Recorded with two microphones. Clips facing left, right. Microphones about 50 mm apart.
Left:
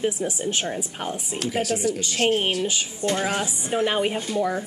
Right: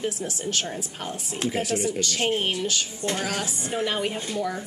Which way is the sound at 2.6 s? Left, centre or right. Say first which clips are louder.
Left 2 dB; centre.